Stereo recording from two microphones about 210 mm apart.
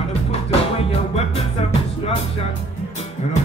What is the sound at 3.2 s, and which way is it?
Music, 35° left (ahead or behind).